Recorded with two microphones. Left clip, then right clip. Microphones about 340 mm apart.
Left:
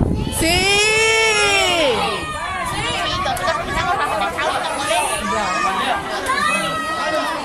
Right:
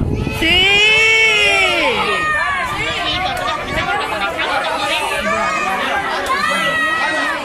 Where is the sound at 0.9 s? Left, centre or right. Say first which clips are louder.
Right 4 dB; left.